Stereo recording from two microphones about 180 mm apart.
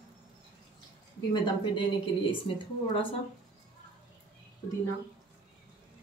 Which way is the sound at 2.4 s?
30° left (ahead or behind).